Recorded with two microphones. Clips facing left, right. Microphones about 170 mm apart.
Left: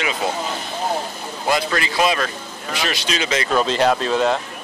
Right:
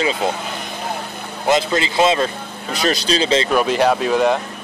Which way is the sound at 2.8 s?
35° right (ahead or behind).